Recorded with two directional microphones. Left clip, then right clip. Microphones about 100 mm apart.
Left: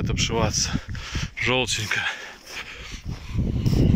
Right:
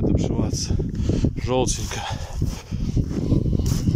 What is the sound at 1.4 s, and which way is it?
Speech, 65° right (ahead or behind).